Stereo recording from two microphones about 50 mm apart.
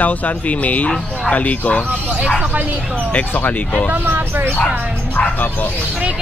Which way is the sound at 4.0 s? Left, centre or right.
Right.